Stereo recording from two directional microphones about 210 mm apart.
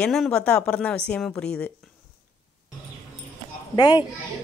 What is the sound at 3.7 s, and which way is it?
Speech, 20° left (ahead or behind).